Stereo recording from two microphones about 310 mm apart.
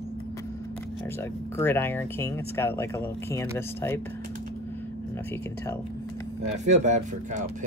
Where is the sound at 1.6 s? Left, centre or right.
Centre.